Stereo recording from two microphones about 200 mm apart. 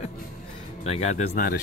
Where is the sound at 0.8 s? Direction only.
30° left (ahead or behind).